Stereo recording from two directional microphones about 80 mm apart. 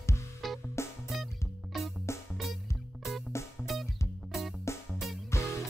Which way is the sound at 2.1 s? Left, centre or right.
Left.